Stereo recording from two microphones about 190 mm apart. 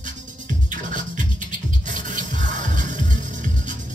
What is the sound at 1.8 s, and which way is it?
Rub, 40° right (ahead or behind).